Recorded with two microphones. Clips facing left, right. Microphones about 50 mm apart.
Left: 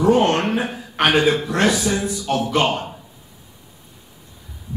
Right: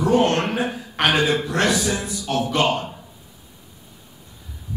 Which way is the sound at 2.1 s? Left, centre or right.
Left.